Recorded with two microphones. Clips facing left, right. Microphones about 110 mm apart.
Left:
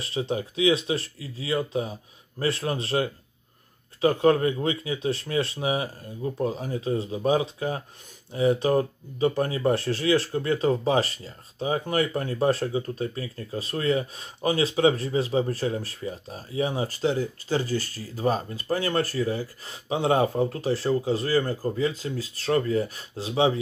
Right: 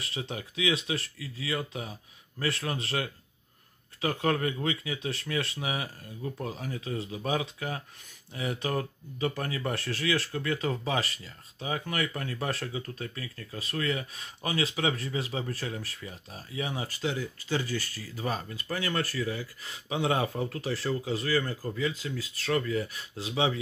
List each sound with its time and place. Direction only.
0.0 s speech: 30° left (ahead or behind)